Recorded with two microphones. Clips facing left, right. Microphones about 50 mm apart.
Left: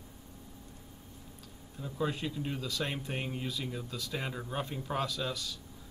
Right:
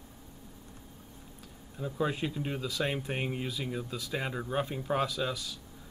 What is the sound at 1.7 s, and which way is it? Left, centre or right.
Speech, centre.